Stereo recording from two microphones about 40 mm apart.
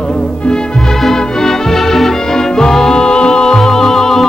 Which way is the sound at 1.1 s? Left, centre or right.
Centre.